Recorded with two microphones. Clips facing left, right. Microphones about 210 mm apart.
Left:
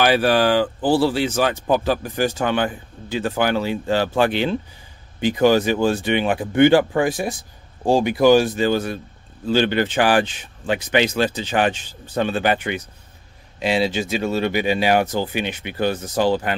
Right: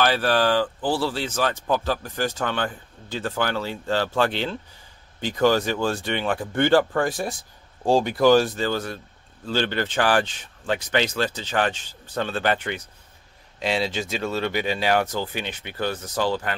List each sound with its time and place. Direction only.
0.0 s speech: 10° left (ahead or behind)
7.2 s speech: centre (ahead or behind)
7.8 s speech: 15° left (ahead or behind)